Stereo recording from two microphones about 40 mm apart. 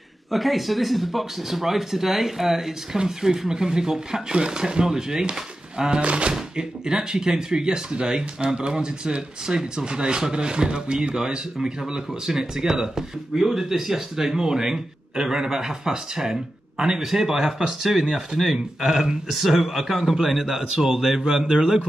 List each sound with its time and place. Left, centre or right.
0.3 s speech: centre; by 6.3 s right
6.3 s a man's voice: centre